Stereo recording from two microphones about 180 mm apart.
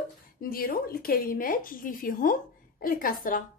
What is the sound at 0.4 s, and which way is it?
Speech, 55° left (ahead or behind).